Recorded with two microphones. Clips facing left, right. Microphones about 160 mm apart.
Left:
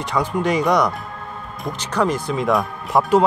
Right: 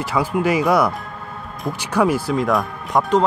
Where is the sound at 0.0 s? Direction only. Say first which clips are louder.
Right 1 dB; 5° right (ahead or behind).